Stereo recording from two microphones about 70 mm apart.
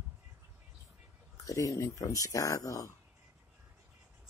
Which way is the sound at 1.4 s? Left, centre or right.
Left.